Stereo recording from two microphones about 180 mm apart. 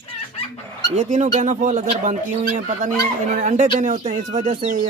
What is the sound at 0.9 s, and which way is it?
Speech, 40° right (ahead or behind).